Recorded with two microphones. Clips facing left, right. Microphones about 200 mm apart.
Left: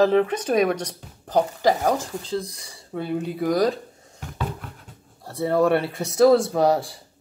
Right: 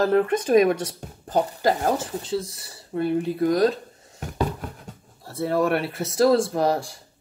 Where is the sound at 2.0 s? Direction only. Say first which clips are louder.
Right 1 dB; 5° right (ahead or behind).